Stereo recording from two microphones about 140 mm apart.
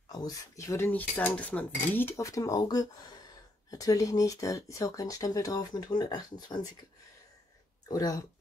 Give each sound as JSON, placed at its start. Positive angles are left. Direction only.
{"t": 0.1, "sound": "cutlery", "side_deg": 25}
{"t": 7.9, "sound": "cutlery", "side_deg": 25}